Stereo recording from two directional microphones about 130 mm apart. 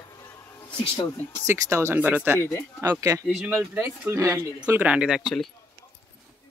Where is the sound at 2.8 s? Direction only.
25° right (ahead or behind).